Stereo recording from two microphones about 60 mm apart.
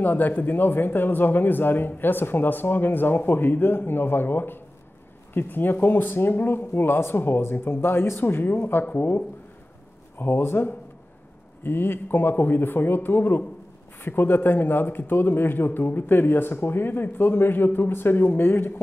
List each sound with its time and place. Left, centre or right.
0.0 s speech: left
10.1 s speech: left